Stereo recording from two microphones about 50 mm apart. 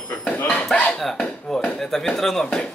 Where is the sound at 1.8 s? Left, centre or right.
Centre.